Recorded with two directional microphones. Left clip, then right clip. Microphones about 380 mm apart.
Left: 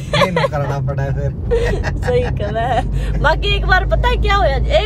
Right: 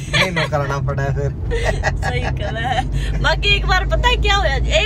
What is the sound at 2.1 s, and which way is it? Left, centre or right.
Speech, left.